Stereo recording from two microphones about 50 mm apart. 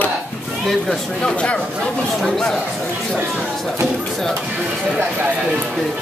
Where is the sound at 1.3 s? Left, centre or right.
Left.